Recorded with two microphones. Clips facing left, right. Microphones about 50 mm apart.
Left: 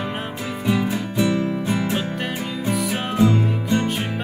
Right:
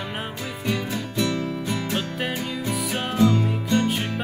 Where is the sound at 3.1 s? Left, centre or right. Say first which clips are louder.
Left 1 dB; centre.